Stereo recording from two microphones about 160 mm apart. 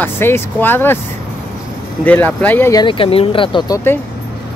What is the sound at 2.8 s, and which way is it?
Speech, 35° left (ahead or behind).